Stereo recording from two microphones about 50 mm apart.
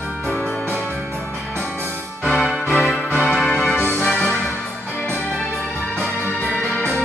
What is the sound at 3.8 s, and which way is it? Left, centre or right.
Music, left.